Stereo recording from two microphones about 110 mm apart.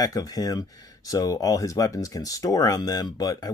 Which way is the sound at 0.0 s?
35° left (ahead or behind).